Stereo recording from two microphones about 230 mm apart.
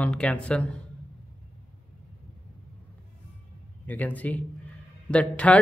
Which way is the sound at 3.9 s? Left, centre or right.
Centre.